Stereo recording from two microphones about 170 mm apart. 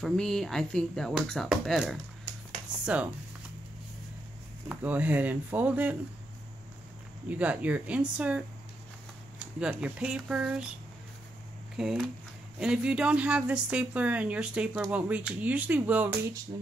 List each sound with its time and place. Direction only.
0.0 s speech: 5° left (ahead or behind)
4.6 s speech: 10° right (ahead or behind)
7.2 s speech: 10° right (ahead or behind)
9.6 s speech: 5° right (ahead or behind)
11.7 s speech: 5° right (ahead or behind)